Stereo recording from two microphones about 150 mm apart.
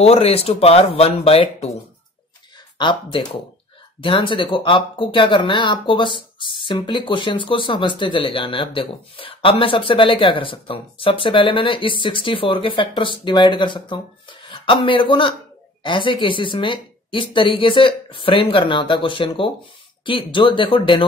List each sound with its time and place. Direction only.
0.0 s speech: 40° left (ahead or behind)
2.8 s speech: 30° left (ahead or behind)